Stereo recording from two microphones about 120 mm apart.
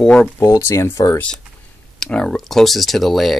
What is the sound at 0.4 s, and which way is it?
Speech, 25° left (ahead or behind).